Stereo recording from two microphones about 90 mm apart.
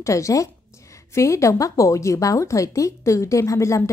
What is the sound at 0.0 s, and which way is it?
A woman's voice, 35° left (ahead or behind).